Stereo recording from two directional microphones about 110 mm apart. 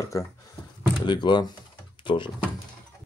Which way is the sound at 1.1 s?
45° left (ahead or behind).